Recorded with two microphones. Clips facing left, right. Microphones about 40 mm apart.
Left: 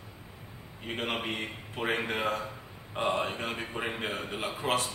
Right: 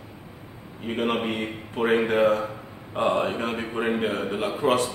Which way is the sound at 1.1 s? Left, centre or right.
Centre.